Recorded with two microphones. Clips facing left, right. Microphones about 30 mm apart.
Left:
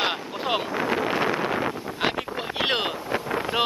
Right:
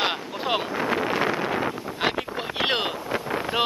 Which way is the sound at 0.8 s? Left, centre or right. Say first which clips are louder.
Even; right.